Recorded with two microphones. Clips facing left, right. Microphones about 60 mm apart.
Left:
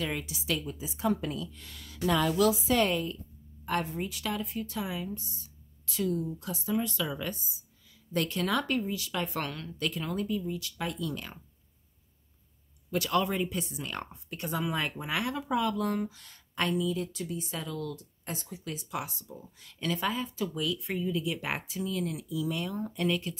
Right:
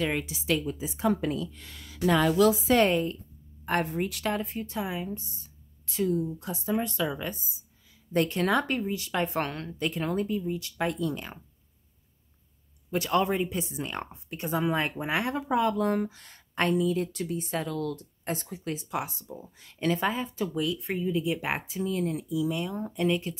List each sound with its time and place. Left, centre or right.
0.0 s speech: right
2.0 s a woman's voice: right
3.9 s speech: right
4.2 s speech: right
4.7 s speech: right
12.9 s speech: right
22.4 s speech: centre